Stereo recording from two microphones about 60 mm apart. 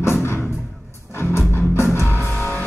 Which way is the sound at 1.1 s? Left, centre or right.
Left.